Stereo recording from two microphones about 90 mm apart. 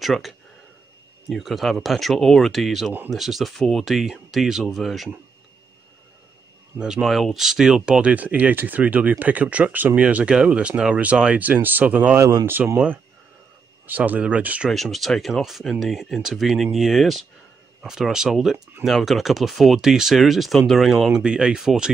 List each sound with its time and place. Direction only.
0.0 s speech: centre (ahead or behind)
6.8 s speech: 5° right (ahead or behind); by 12.7 s 25° right (ahead or behind)
12.7 s speech: 15° right (ahead or behind)
14.7 s speech: centre (ahead or behind)